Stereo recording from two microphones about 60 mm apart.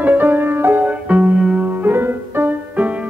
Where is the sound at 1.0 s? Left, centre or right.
Right.